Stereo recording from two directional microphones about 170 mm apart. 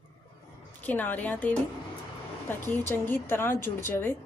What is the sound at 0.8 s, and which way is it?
Speech, 10° left (ahead or behind).